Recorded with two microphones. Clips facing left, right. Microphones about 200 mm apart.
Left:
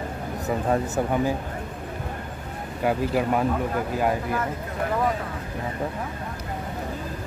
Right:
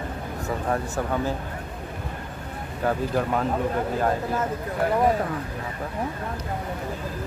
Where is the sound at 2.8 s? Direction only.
10° left (ahead or behind).